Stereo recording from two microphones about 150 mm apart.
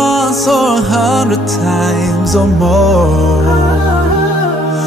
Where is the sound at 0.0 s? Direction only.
Centre (ahead or behind).